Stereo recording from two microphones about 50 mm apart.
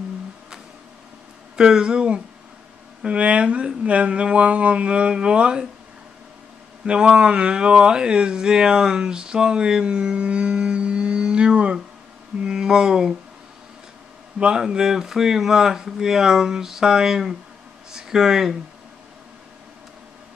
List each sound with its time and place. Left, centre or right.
1.6 s speech: centre
6.9 s speech: centre
14.4 s speech: centre